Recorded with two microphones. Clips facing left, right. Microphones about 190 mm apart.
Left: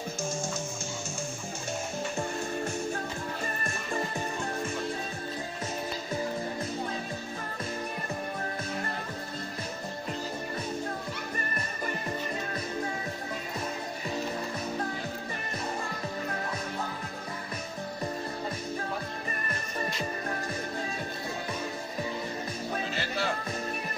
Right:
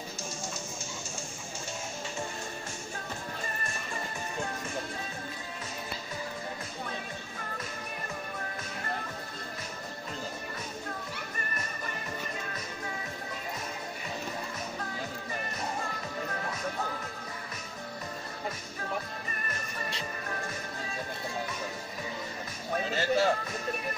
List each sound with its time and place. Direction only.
22.9 s music: 40° right (ahead or behind)